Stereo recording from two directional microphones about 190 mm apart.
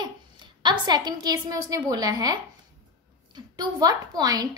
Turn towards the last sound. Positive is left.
turn(degrees=-20)  # may be behind; listen again after turning